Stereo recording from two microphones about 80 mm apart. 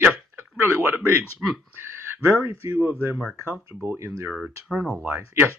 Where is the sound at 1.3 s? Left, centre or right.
Centre.